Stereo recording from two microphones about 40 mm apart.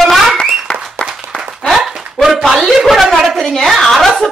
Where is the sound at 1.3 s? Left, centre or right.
Left.